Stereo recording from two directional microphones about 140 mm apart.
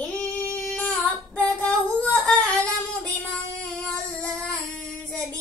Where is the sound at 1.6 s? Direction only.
10° left (ahead or behind).